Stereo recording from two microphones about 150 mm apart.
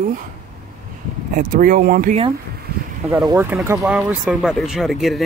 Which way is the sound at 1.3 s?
70° right (ahead or behind).